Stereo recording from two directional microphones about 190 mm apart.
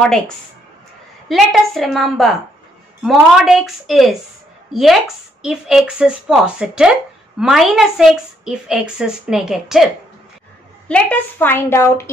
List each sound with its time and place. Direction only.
1.3 s a woman's voice: centre (ahead or behind)
10.9 s a woman's voice: 10° left (ahead or behind)